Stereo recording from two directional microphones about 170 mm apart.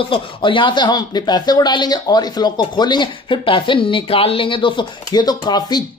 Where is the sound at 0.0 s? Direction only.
30° left (ahead or behind).